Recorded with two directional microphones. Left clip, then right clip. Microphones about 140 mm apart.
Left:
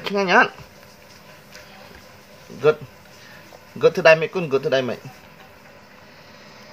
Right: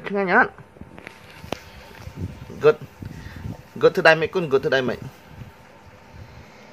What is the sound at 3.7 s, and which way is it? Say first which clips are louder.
A man's voice: left 1 dB; 20° right (ahead or behind).